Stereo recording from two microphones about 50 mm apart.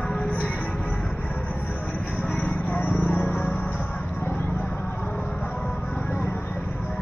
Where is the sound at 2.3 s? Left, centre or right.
Left.